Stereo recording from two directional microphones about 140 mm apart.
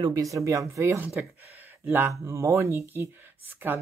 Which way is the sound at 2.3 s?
20° right (ahead or behind).